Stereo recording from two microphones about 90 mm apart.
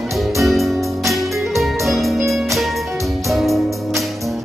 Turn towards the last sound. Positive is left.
turn(degrees=0)  # may be behind; listen again after turning